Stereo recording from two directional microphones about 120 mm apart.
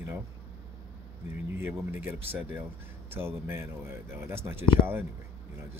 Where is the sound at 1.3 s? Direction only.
20° right (ahead or behind).